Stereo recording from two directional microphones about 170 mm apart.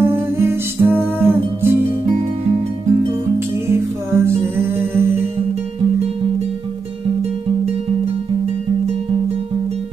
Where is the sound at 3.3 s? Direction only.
15° right (ahead or behind).